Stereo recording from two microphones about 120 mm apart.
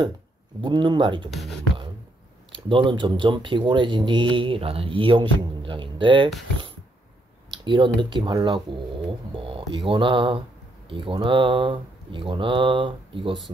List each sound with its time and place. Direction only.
0.6 s speech: 40° right (ahead or behind)
1.3 s speech: centre (ahead or behind)
2.5 s speech: 45° right (ahead or behind)
7.5 s speech: 40° right (ahead or behind)